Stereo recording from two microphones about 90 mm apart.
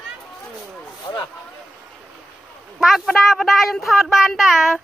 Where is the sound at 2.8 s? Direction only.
Centre (ahead or behind).